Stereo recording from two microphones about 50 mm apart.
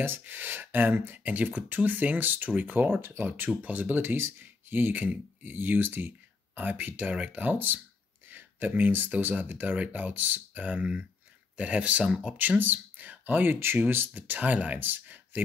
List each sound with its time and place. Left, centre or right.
0.2 s speech: right
1.2 s speech: right
4.0 s speech: right; by 12.4 s centre
12.4 s speech: right
14.1 s speech: right